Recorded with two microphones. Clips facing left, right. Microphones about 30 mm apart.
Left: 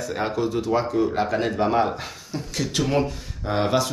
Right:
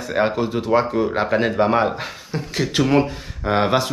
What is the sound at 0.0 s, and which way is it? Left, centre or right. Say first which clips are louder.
Speech: right 5 dB; right.